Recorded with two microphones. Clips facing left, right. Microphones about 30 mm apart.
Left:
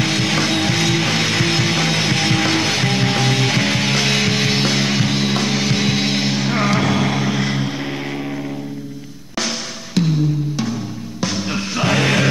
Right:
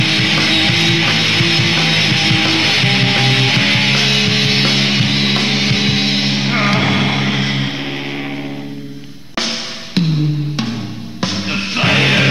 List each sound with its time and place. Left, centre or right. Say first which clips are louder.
0.0 s music: right 4 dB; right
9.4 s music: right 3 dB; right